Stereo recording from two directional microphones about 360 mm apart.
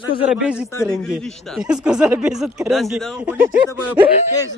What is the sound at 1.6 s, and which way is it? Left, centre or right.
Speech, centre.